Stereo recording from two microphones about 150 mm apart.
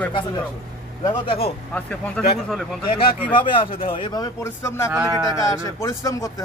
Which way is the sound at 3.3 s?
35° left (ahead or behind).